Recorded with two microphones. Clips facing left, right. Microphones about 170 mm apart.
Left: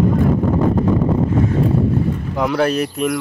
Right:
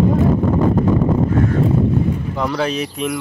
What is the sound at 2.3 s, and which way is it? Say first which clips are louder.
Speech: left 6 dB; 5° left (ahead or behind).